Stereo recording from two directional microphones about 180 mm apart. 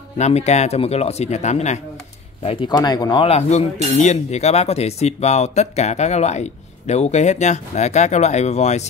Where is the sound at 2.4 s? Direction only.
30° left (ahead or behind).